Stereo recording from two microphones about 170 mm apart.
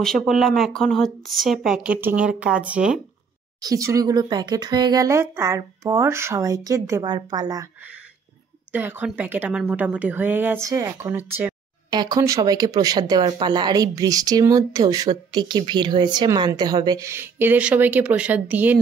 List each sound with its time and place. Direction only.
0.0 s speech: 5° left (ahead or behind)
3.6 s speech: 20° right (ahead or behind)
8.7 s a woman's voice: 10° right (ahead or behind)
11.9 s speech: 25° right (ahead or behind)